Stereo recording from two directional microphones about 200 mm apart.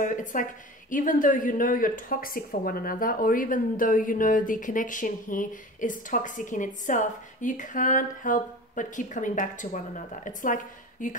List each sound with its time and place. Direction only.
0.0 s a woman's voice: 40° left (ahead or behind)